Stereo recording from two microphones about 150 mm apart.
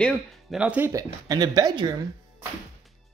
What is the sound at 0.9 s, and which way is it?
Speech, 25° right (ahead or behind).